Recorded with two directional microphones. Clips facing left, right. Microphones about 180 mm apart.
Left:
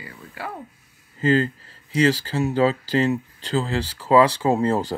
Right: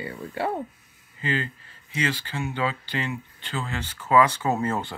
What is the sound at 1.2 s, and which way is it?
Speech, 40° left (ahead or behind).